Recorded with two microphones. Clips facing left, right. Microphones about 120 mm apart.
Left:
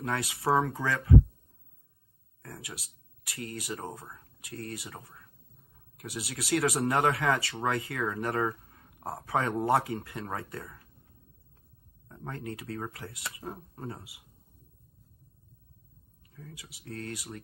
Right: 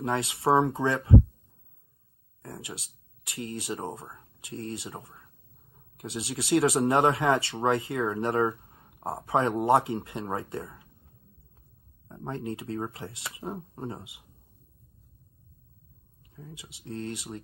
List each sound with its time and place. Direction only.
0.0 s speech: 25° right (ahead or behind)
2.4 s speech: 25° right (ahead or behind)
12.1 s speech: 25° right (ahead or behind)
16.5 s speech: 25° right (ahead or behind)